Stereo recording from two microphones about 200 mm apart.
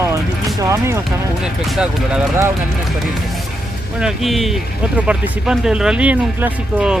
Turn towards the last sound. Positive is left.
turn(degrees=-5)  # may be behind; listen again after turning